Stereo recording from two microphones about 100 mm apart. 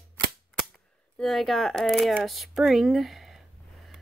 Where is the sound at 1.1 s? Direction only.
Centre (ahead or behind).